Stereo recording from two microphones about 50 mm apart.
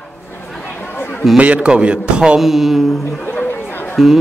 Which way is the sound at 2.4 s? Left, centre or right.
Centre.